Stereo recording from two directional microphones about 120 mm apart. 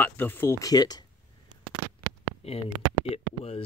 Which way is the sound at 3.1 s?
55° left (ahead or behind).